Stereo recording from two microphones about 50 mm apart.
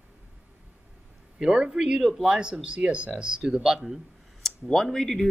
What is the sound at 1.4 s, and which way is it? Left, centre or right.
Speech, centre.